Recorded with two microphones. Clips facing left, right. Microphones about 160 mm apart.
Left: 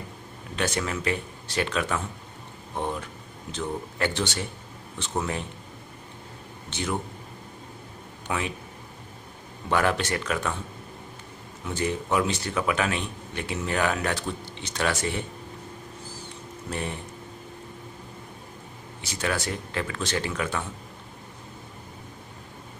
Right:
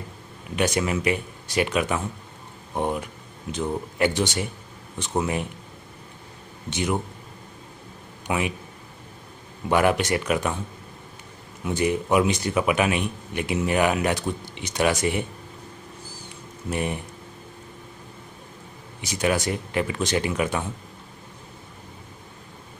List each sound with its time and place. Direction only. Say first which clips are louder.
0.6 s a man's voice: right 5 dB; 15° right (ahead or behind)
6.7 s a man's voice: right 4 dB; 15° right (ahead or behind)
8.3 s a man's voice: right 4 dB; 15° right (ahead or behind)
9.7 s a man's voice: right 4 dB; 15° right (ahead or behind)
11.6 s a man's voice: right 5 dB; 15° right (ahead or behind)
16.7 s a man's voice: right 5 dB; 15° right (ahead or behind)
18.9 s a man's voice: right 5 dB; 15° right (ahead or behind)